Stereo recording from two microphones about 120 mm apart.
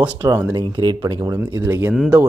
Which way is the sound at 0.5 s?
35° right (ahead or behind).